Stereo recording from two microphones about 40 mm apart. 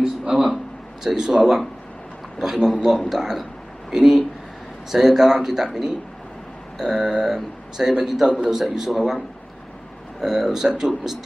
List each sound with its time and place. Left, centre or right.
0.0 s a sound: centre
1.0 s speech: centre
1.4 s speech: centre
2.4 s speech: centre
6.8 s speech: centre
10.2 s speech: centre